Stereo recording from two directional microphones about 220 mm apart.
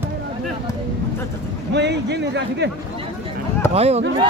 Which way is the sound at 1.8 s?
50° right (ahead or behind).